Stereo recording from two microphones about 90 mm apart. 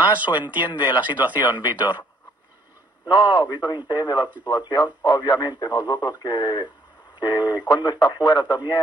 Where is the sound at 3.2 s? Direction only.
55° left (ahead or behind).